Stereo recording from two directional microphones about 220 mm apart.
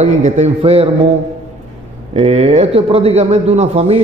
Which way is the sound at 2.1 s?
30° right (ahead or behind).